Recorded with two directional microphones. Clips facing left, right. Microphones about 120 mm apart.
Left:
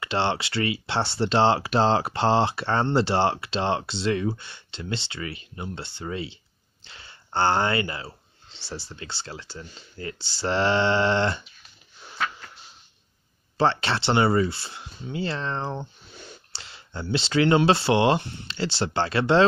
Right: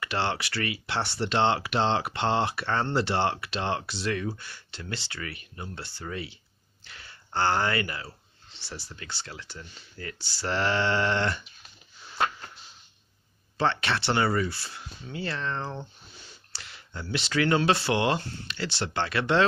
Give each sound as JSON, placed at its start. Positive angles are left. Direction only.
{"t": 0.0, "sound": "speech", "side_deg": 25}
{"t": 13.6, "sound": "speech", "side_deg": 30}